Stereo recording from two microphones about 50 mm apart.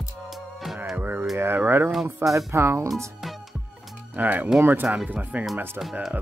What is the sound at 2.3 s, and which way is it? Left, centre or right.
Speech, right.